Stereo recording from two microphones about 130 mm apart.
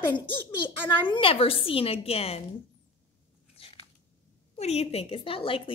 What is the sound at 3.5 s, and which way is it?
Biting, 50° left (ahead or behind).